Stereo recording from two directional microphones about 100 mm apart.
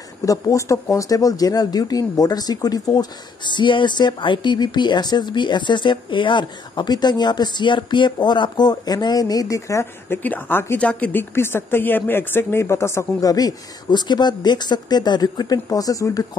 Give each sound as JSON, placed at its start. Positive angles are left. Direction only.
{"t": 0.2, "sound": "speech", "side_deg": 35}